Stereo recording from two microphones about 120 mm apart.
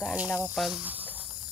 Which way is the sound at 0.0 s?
5° right (ahead or behind).